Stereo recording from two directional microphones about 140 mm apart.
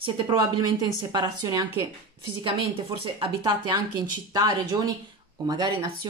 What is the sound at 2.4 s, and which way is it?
Speech, 40° right (ahead or behind).